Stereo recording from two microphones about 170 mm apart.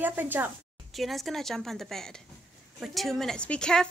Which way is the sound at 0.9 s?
Centre (ahead or behind).